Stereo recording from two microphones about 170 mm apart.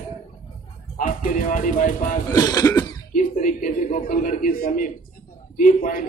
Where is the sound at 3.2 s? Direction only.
50° left (ahead or behind).